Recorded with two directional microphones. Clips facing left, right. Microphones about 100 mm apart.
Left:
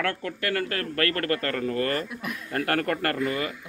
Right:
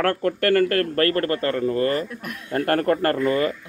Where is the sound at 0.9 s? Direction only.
35° right (ahead or behind).